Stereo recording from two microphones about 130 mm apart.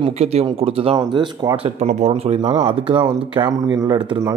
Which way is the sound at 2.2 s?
60° right (ahead or behind).